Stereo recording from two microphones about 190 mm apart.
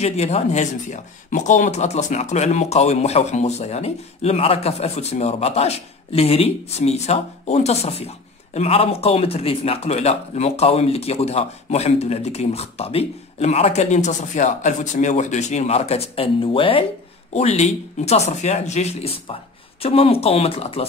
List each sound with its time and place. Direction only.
0.0 s speech: 35° left (ahead or behind)